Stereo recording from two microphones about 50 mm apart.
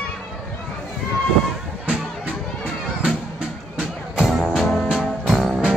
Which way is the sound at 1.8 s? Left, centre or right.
Right.